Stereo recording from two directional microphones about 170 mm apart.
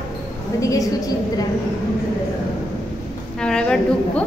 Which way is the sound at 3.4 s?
5° left (ahead or behind).